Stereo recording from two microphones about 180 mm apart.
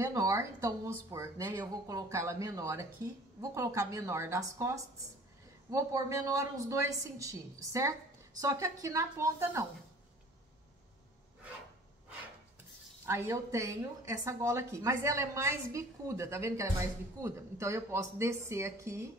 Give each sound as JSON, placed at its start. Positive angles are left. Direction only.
{"t": 0.0, "sound": "speech", "side_deg": -15}
{"t": 13.0, "sound": "speech", "side_deg": -15}